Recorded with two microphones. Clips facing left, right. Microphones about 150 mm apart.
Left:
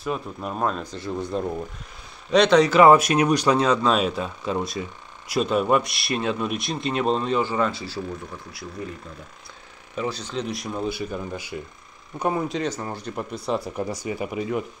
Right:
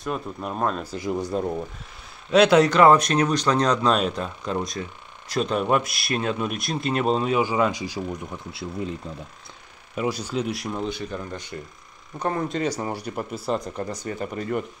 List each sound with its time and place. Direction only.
0.0 s speech: centre (ahead or behind)
2.7 s speech: 10° left (ahead or behind); by 8.2 s 15° right (ahead or behind)
8.5 s speech: 25° right (ahead or behind)
9.9 s speech: 10° right (ahead or behind); by 12.4 s 10° left (ahead or behind)
12.6 s speech: 10° right (ahead or behind)
13.7 s speech: 10° left (ahead or behind)